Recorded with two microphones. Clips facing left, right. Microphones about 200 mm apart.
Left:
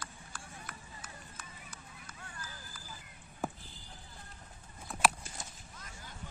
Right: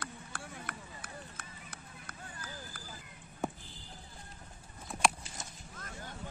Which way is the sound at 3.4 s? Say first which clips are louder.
Right 1 dB; centre (ahead or behind).